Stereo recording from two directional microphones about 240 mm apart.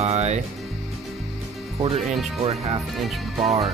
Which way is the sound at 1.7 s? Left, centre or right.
Right.